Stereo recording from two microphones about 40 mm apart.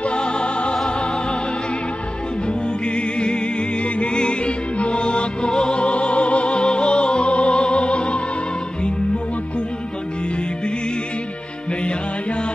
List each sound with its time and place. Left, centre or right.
0.0 s music: left
2.4 s music: left